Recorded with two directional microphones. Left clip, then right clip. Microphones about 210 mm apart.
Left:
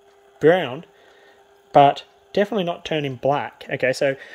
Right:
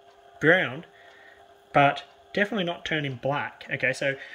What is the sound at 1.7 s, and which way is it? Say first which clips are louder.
Speech: left 7 dB; 15° left (ahead or behind).